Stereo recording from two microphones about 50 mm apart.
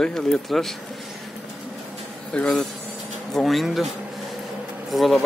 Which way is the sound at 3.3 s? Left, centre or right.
Centre.